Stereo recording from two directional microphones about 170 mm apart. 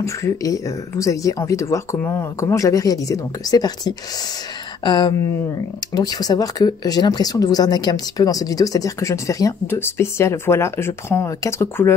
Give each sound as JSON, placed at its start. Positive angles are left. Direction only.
{"t": 0.0, "sound": "speech", "side_deg": 20}